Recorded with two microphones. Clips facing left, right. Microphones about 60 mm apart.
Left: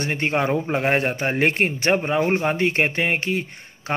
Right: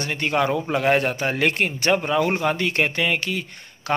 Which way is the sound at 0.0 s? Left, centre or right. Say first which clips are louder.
Even; left.